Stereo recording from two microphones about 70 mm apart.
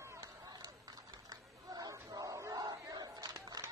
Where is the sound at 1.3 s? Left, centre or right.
Right.